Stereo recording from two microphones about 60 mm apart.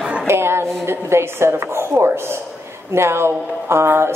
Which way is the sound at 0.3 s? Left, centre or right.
Right.